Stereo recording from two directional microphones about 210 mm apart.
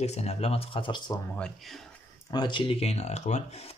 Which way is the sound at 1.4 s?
Centre (ahead or behind).